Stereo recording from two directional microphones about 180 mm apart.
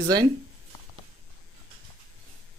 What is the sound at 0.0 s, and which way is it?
Speech, 20° right (ahead or behind).